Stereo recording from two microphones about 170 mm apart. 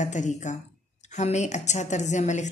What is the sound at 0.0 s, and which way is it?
A woman's voice, 45° left (ahead or behind).